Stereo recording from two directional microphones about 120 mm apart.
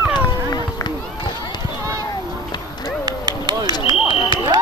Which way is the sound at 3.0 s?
35° right (ahead or behind).